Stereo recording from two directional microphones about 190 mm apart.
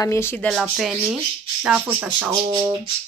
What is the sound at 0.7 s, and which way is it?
Speech, centre (ahead or behind).